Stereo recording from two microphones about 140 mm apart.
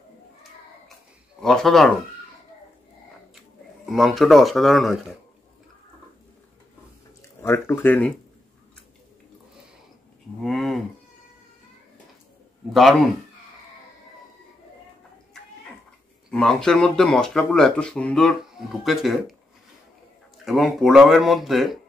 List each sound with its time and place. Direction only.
1.4 s speech: 5° left (ahead or behind)
3.3 s speech: centre (ahead or behind)
7.4 s speech: 15° left (ahead or behind)
10.4 s livestock: centre (ahead or behind)
12.7 s speech: centre (ahead or behind)
16.3 s speech: 5° left (ahead or behind)
20.4 s speech: centre (ahead or behind)